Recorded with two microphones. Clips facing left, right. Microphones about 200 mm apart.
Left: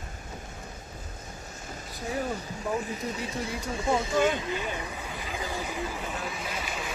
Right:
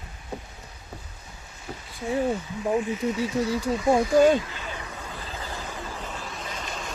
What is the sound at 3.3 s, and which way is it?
Speech, 30° left (ahead or behind).